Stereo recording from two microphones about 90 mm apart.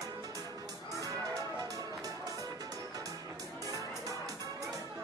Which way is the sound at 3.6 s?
40° right (ahead or behind).